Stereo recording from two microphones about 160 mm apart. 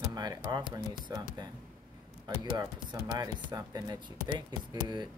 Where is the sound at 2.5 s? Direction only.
25° right (ahead or behind).